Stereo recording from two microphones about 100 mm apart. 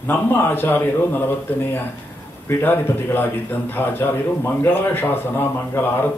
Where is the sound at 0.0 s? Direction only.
20° left (ahead or behind).